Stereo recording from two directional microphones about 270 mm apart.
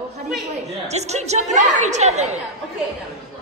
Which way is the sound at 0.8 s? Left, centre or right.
Right.